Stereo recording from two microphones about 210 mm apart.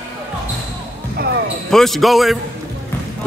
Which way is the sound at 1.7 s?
Centre (ahead or behind).